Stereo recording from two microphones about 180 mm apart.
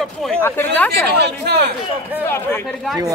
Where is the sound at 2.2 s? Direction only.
15° left (ahead or behind).